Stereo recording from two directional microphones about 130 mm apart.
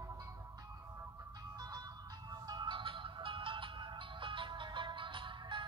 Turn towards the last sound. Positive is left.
turn(degrees=-40)  # may be behind; listen again after turning